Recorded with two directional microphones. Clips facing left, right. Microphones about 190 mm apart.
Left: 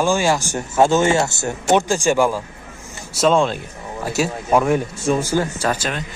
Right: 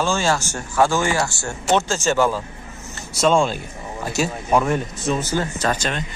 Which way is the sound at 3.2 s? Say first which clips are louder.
Left 1 dB; centre (ahead or behind).